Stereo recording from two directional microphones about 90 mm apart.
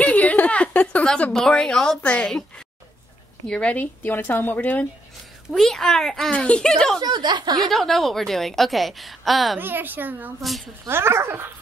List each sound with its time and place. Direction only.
0.0 s a sound: 15° left (ahead or behind)
3.4 s speech: 15° left (ahead or behind)
5.5 s a woman's voice: 5° left (ahead or behind)
7.0 s speech: 55° right (ahead or behind)
7.7 s a woman's voice: centre (ahead or behind)
9.6 s a woman's voice: 20° right (ahead or behind)